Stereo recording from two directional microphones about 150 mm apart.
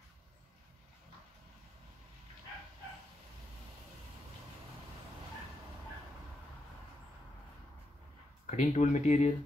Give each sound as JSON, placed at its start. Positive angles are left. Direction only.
{"t": 8.5, "sound": "speech", "side_deg": 55}